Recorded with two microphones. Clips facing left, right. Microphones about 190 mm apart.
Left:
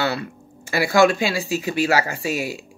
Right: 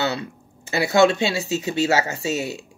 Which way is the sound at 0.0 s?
20° right (ahead or behind).